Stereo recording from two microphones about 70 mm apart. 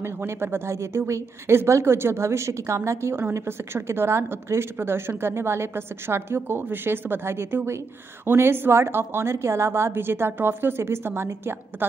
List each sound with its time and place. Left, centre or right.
0.0 s a woman's voice: right